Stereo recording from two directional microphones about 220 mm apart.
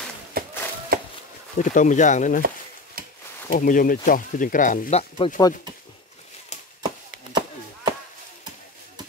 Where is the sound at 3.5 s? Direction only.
40° left (ahead or behind).